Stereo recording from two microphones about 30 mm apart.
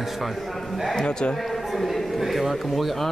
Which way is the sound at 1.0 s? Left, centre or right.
Left.